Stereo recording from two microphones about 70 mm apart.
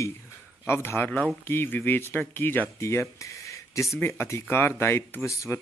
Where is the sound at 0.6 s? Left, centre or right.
Left.